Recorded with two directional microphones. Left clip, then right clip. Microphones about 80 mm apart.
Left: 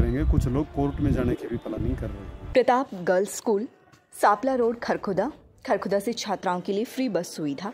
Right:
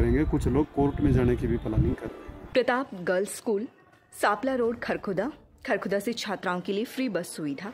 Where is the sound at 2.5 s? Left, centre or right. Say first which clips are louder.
Left 4 dB; left.